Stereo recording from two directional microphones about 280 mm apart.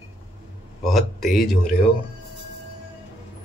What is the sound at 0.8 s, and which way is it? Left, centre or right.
Speech, centre.